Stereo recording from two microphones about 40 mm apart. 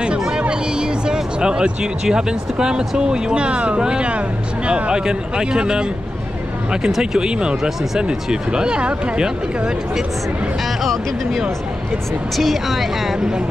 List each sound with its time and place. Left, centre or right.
0.4 s music: right
2.0 s speech: centre
7.0 s speech: centre
10.8 s speech: centre